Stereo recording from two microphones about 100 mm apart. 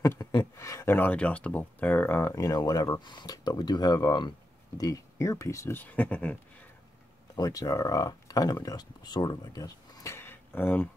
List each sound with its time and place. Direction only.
0.4 s a sound: 30° left (ahead or behind)
0.9 s speech: 15° left (ahead or behind)
2.3 s speech: 35° left (ahead or behind)
5.8 s speech: 15° left (ahead or behind)
7.3 s speech: 35° left (ahead or behind)
10.1 s a sound: 20° left (ahead or behind)